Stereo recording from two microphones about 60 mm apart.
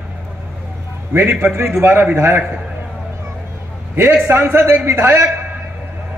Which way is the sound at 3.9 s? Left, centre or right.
Right.